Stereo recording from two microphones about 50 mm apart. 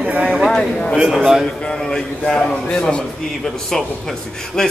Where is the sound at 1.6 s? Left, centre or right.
Centre.